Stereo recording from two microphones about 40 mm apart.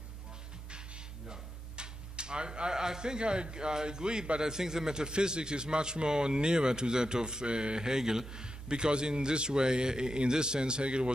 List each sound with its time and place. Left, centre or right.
0.7 s music: right
1.2 s speech: right